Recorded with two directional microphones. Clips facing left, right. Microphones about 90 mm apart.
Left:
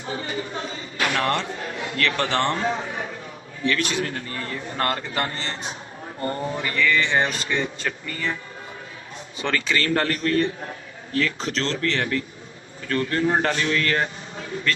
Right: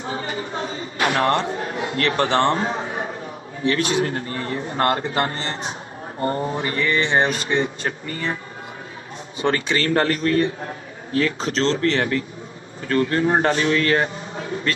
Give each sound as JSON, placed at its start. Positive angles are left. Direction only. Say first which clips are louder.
{"t": 0.0, "sound": "a sound", "louder": "right 2 dB", "side_deg": -35}
{"t": 3.6, "sound": "speech", "louder": "right 4 dB", "side_deg": -30}
{"t": 9.5, "sound": "speech", "louder": "right 2 dB", "side_deg": -30}